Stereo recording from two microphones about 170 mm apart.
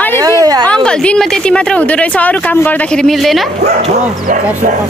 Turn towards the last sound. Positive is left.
turn(degrees=0)  # may be behind; listen again after turning